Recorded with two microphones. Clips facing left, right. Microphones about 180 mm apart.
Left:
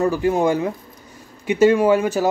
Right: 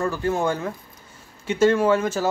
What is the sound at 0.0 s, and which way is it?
Speech, 15° left (ahead or behind).